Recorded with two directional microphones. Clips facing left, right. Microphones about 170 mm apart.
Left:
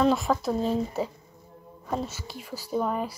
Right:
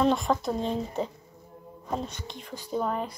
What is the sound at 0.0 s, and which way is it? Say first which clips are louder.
Speech: left 1 dB; 5° left (ahead or behind).